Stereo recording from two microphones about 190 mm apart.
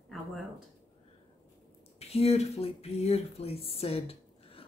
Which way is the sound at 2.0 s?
35° left (ahead or behind).